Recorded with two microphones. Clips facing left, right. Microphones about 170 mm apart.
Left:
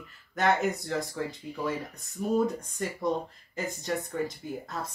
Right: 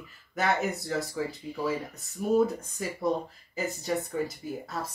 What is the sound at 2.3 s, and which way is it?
Speech, 5° right (ahead or behind).